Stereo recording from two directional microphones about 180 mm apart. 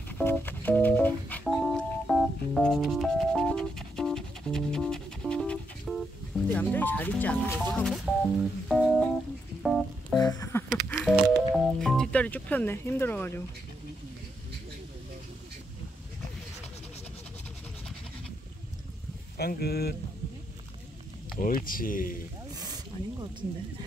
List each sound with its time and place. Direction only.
0.1 s music: 10° left (ahead or behind)
6.5 s speech: 10° left (ahead or behind)
9.6 s music: centre (ahead or behind)
10.1 s a sound: 20° left (ahead or behind)
11.0 s speech: centre (ahead or behind)
19.3 s speech: 60° left (ahead or behind)
21.4 s speech: 50° left (ahead or behind)
22.6 s snake: 20° right (ahead or behind)